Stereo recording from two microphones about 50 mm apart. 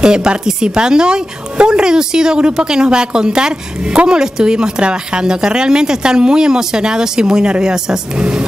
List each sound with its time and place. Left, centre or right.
0.0 s a woman's voice: centre